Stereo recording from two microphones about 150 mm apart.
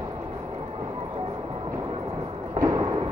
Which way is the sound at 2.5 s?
25° right (ahead or behind).